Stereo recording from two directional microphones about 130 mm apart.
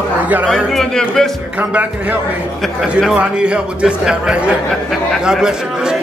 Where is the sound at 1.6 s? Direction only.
10° right (ahead or behind).